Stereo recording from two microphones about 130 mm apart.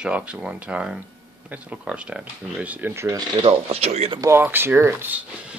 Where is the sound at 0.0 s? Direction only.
10° right (ahead or behind).